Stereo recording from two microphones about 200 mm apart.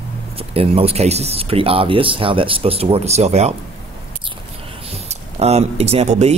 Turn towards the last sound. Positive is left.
turn(degrees=-35)  # may be behind; listen again after turning